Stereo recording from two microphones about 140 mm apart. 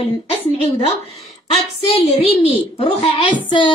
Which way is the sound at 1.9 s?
45° left (ahead or behind).